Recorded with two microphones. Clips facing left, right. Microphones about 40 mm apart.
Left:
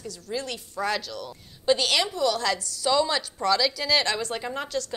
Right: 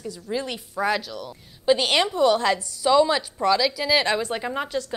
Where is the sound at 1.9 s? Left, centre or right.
Right.